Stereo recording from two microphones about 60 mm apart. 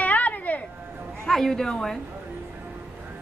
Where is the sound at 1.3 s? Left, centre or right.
Centre.